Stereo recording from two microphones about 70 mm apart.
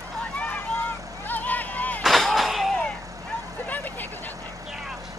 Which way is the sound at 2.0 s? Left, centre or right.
Centre.